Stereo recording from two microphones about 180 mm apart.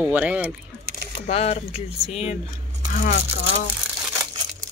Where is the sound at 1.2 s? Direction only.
35° left (ahead or behind).